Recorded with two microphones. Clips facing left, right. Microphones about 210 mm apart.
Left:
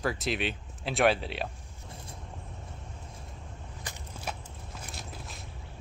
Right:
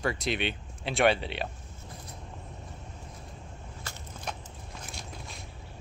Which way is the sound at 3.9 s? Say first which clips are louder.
Left 1 dB; 15° left (ahead or behind).